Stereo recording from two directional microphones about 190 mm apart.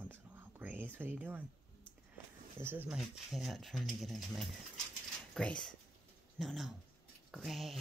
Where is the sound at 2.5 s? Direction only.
10° right (ahead or behind).